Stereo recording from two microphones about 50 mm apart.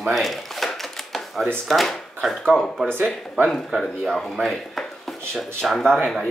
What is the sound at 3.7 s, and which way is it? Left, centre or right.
Speech, centre.